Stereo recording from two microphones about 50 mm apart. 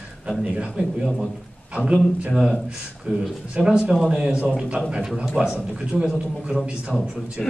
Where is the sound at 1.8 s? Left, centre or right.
Left.